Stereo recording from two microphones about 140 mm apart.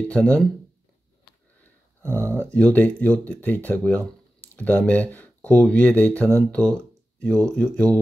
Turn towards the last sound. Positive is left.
turn(degrees=5)  # may be behind; listen again after turning